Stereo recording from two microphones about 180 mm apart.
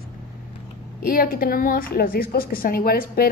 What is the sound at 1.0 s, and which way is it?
A woman's voice, 55° left (ahead or behind).